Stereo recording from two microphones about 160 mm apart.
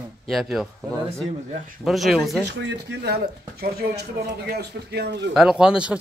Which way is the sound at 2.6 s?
90° right.